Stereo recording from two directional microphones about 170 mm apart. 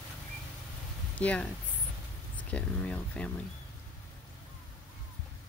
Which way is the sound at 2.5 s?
5° left (ahead or behind).